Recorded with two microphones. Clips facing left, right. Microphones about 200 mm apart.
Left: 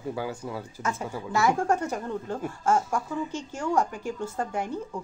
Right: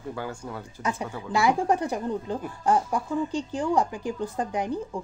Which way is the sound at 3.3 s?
35° right (ahead or behind).